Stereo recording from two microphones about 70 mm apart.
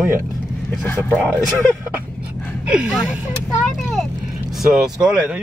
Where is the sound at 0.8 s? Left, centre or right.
Left.